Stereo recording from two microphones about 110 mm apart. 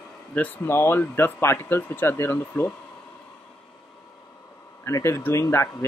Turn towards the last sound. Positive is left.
turn(degrees=25)  # may be behind; listen again after turning